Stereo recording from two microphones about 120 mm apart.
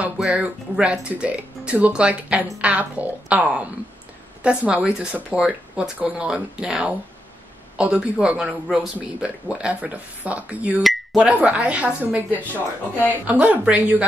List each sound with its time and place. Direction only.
0.0 s speech: 10° right (ahead or behind)
12.3 s speech: 15° left (ahead or behind)
13.3 s speech: 10° right (ahead or behind)